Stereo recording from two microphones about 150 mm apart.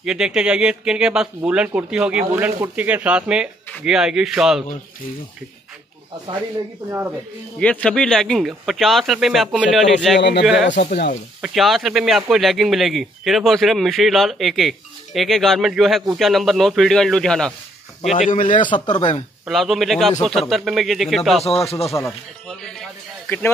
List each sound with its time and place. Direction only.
0.0 s speech: 5° right (ahead or behind)
6.9 s speech: 15° right (ahead or behind)
7.5 s speech: 5° left (ahead or behind)
18.3 s a man's voice: 60° left (ahead or behind)
18.6 s speech: 30° left (ahead or behind)
19.4 s speech: centre (ahead or behind)
21.5 s speech: 40° left (ahead or behind)
22.6 s a sound: 5° left (ahead or behind)